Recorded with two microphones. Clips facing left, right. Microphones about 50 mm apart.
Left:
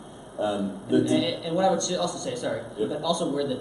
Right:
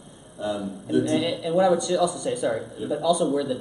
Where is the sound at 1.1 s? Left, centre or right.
Centre.